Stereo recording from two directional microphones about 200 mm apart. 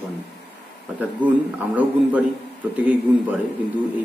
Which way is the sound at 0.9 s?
5° right (ahead or behind).